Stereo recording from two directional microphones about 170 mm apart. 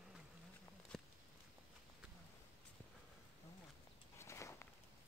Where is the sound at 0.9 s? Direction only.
Centre (ahead or behind).